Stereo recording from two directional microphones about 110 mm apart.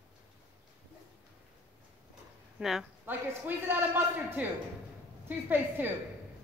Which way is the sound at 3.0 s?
20° right (ahead or behind).